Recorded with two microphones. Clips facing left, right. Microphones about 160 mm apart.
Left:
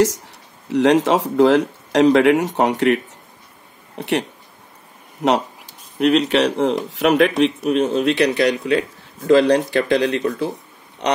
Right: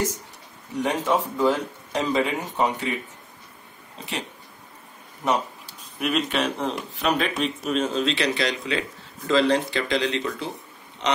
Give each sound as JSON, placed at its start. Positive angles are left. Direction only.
{"t": 0.7, "sound": "speech", "side_deg": 85}
{"t": 5.2, "sound": "speech", "side_deg": 90}
{"t": 5.9, "sound": "speech", "side_deg": 75}